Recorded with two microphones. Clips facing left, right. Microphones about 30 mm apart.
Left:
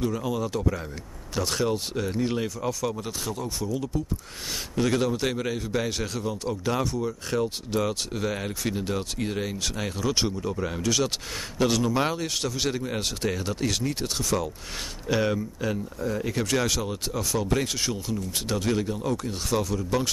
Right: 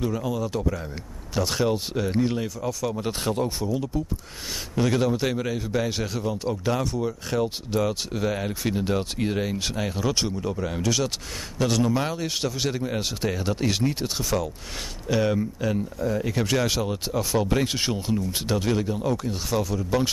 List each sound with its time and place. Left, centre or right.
0.0 s a man's voice: centre
2.2 s a man's voice: centre
3.1 s speech: right
4.7 s a man's voice: centre
12.2 s speech: centre
15.0 s a man's voice: centre
17.7 s speech: right
18.5 s a man's voice: centre